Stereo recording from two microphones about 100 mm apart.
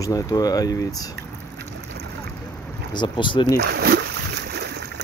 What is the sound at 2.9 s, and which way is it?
Speech, 50° left (ahead or behind).